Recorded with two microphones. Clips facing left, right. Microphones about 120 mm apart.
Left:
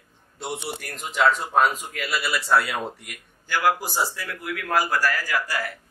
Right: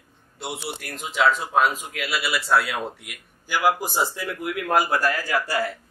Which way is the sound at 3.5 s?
15° right (ahead or behind).